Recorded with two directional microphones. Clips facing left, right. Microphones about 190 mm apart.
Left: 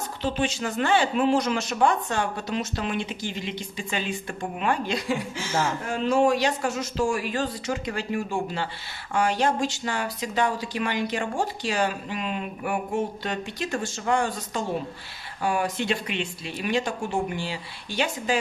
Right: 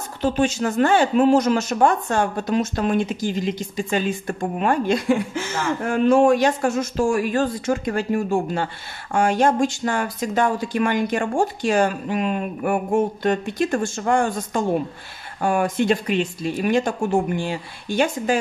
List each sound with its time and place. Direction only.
0.2 s speech: 45° right (ahead or behind)